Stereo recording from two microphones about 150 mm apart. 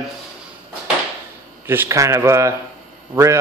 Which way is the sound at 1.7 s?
15° right (ahead or behind).